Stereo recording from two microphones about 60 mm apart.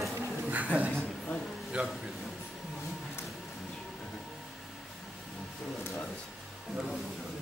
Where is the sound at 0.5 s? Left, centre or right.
Right.